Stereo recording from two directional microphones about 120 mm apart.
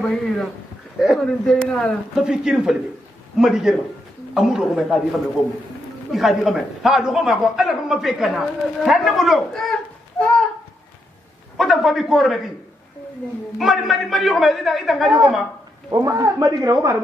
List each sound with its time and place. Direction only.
0.0 s a man's voice: centre (ahead or behind)
11.5 s a man's voice: centre (ahead or behind)
13.6 s a man's voice: centre (ahead or behind)
15.9 s a man's voice: 30° right (ahead or behind)